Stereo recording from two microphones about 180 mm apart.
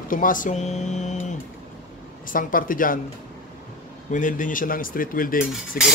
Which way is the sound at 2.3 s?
50° left (ahead or behind).